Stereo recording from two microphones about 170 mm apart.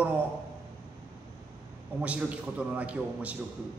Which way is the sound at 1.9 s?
10° right (ahead or behind).